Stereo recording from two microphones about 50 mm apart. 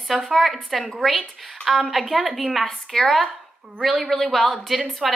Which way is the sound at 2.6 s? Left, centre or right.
Centre.